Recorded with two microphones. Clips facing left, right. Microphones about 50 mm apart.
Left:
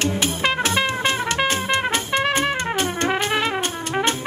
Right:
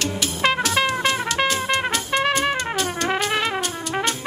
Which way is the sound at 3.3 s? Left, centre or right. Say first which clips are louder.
Left 1 dB; centre.